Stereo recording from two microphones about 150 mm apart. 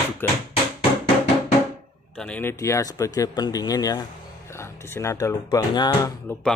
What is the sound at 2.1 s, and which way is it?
Speech, 5° left (ahead or behind).